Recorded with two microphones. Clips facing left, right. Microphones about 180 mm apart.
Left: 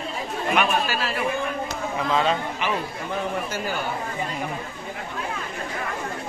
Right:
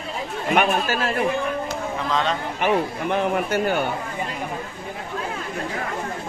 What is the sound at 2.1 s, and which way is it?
Speech, 10° left (ahead or behind).